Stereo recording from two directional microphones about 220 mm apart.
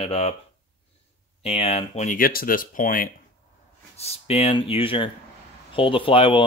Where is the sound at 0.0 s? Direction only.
25° left (ahead or behind).